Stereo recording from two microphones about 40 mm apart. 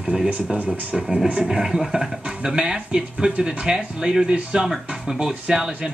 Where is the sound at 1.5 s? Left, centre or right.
Centre.